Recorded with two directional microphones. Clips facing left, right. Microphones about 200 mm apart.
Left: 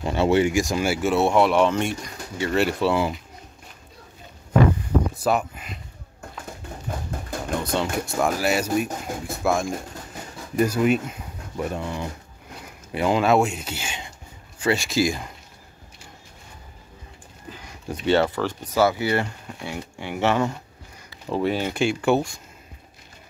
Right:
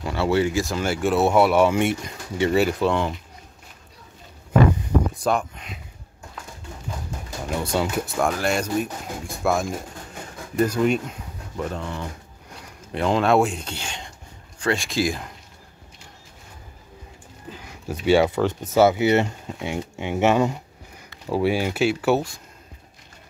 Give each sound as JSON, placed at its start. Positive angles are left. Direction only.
{"t": 0.0, "sound": "speech", "side_deg": 20}
{"t": 2.0, "sound": "speech", "side_deg": -25}
{"t": 2.5, "sound": "speech", "side_deg": 0}
{"t": 5.1, "sound": "speech", "side_deg": 5}
{"t": 7.4, "sound": "speech", "side_deg": -5}
{"t": 17.8, "sound": "speech", "side_deg": -10}